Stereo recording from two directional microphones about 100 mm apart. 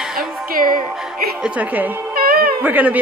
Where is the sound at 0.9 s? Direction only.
5° right (ahead or behind).